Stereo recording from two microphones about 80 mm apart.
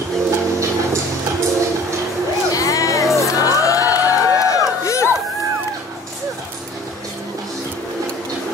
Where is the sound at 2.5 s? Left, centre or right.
Left.